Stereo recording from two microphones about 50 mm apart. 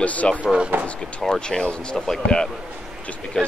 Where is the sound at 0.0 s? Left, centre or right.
Left.